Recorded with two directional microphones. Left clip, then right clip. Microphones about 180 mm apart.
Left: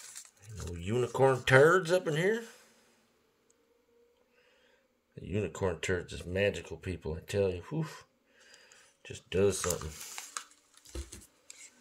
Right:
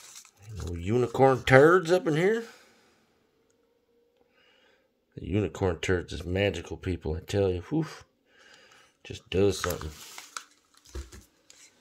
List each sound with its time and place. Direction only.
0.5 s a sound: 35° right (ahead or behind)
1.4 s speech: 50° right (ahead or behind)
4.4 s speech: 55° right (ahead or behind); by 9.8 s 35° right (ahead or behind)